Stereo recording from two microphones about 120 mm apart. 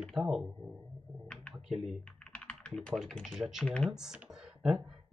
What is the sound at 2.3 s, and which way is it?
Speech, 10° left (ahead or behind).